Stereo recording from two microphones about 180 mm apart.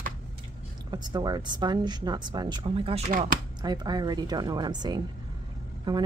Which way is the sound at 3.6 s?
25° right (ahead or behind).